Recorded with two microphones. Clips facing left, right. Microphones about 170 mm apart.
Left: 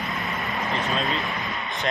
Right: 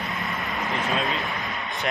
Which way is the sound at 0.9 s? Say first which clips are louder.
Even; centre (ahead or behind).